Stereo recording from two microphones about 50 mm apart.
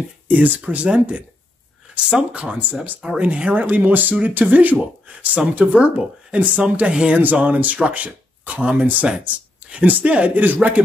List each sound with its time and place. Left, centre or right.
0.3 s speech: right